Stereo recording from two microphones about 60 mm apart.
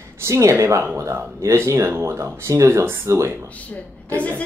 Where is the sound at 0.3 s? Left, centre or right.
Right.